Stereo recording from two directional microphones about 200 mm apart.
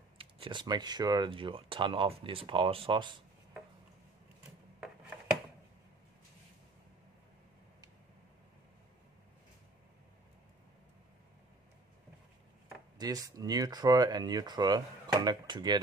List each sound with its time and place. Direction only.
0.2 s speech: 25° right (ahead or behind)
12.9 s speech: 20° right (ahead or behind)